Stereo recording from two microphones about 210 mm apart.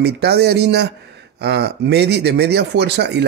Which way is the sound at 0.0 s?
50° right (ahead or behind).